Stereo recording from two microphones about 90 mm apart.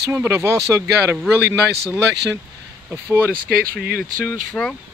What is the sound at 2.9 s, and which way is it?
Speech, 20° right (ahead or behind).